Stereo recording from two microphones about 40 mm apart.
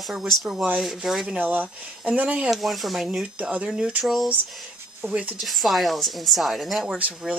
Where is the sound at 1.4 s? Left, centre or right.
Right.